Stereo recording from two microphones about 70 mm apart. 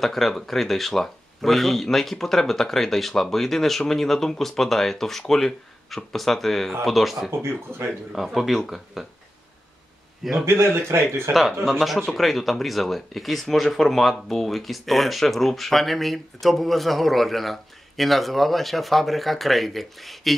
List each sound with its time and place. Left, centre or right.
0.0 s speech: centre
7.2 s speech: right
8.1 s speech: centre
10.4 s speech: right
11.6 s speech: centre